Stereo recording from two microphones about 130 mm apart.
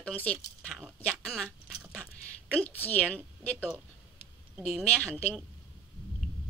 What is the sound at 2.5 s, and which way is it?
Speech, 10° left (ahead or behind).